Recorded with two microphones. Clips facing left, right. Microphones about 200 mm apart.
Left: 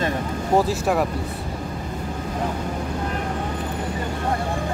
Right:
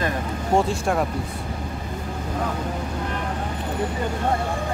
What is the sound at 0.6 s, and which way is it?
Speech, 5° left (ahead or behind).